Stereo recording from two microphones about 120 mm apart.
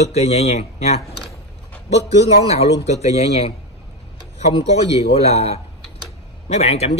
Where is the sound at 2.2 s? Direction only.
60° left (ahead or behind).